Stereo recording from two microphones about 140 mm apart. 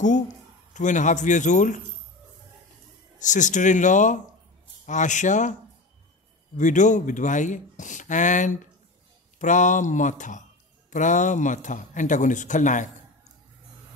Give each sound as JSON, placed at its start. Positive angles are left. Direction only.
{"t": 0.7, "sound": "speech", "side_deg": 60}
{"t": 3.2, "sound": "speech", "side_deg": 60}